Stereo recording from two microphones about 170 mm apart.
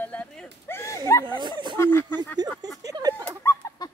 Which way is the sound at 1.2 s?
25° right (ahead or behind).